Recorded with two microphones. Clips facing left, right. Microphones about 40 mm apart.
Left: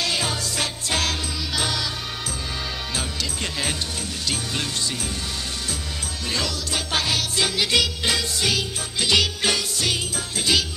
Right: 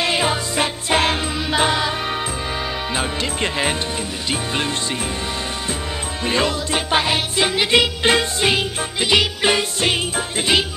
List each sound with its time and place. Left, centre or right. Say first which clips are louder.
0.0 s music: right 6 dB; right
3.0 s music: right 8 dB; right
6.2 s music: right 8 dB; right